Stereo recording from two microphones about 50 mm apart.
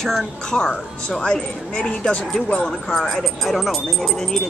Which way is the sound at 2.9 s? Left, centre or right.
Centre.